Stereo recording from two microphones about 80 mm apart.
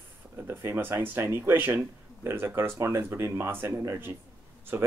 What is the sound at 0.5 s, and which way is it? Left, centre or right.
Speech, right.